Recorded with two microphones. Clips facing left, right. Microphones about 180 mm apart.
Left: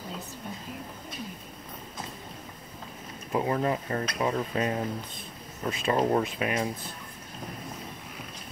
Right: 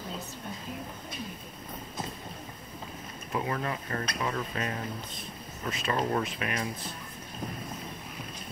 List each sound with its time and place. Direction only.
3.3 s speech: 25° left (ahead or behind)